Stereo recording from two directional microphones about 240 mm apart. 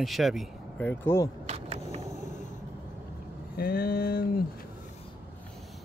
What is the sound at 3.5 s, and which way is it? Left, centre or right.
Speech, left.